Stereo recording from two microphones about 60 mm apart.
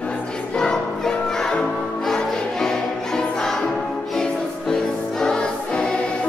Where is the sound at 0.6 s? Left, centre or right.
Centre.